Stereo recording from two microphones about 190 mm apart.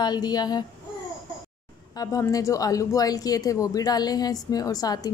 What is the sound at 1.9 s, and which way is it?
Speech, 20° left (ahead or behind).